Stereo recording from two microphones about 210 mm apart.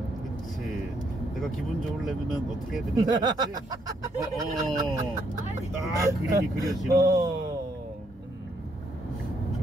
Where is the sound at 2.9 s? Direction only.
20° right (ahead or behind).